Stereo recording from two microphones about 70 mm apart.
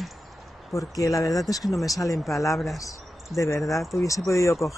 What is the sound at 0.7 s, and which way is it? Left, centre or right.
Speech, left.